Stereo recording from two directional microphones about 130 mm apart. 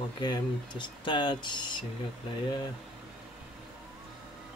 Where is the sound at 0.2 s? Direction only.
35° left (ahead or behind).